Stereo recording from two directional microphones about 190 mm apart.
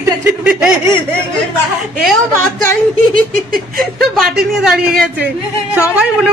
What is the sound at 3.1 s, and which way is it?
Giggle, 50° right (ahead or behind).